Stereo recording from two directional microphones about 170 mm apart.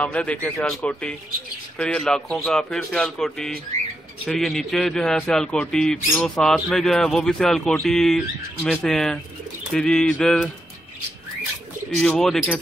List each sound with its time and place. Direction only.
0.0 s a man's voice: 5° left (ahead or behind)
1.8 s speech: 5° left (ahead or behind)
12.0 s speech: centre (ahead or behind)